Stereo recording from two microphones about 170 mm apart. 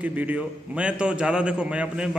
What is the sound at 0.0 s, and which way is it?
A man's voice, 10° right (ahead or behind).